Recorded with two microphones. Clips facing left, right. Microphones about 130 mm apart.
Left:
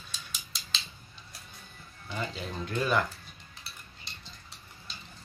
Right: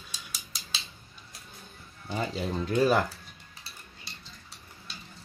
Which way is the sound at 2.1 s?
40° right (ahead or behind).